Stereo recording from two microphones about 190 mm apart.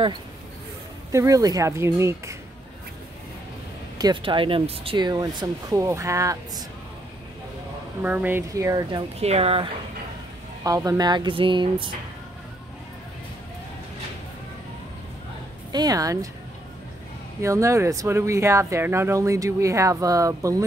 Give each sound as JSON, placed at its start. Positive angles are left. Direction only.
{"t": 1.1, "sound": "speech", "side_deg": -15}
{"t": 4.0, "sound": "speech", "side_deg": -25}
{"t": 8.0, "sound": "speech", "side_deg": -10}
{"t": 9.2, "sound": "speech", "side_deg": -30}
{"t": 10.6, "sound": "speech", "side_deg": -15}
{"t": 15.7, "sound": "speech", "side_deg": -20}
{"t": 17.4, "sound": "speech", "side_deg": -15}